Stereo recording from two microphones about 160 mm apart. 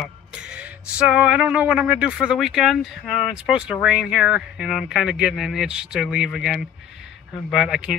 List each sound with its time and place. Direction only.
0.0 s music: 5° right (ahead or behind)